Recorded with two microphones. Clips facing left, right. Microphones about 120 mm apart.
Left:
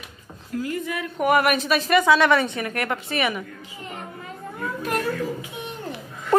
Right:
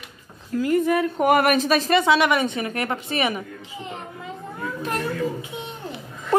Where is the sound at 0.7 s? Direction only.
45° right (ahead or behind).